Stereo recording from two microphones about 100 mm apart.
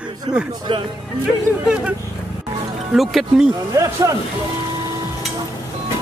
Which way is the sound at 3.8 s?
30° right (ahead or behind).